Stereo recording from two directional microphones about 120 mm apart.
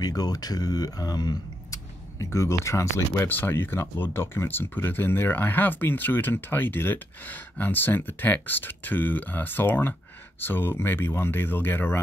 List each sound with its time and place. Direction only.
0.0 s speech: 30° left (ahead or behind); by 12.0 s 15° left (ahead or behind)